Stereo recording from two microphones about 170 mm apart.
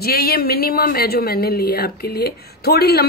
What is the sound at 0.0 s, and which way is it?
Speech, 65° left (ahead or behind).